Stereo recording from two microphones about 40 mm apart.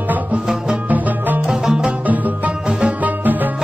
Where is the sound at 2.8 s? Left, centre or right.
Right.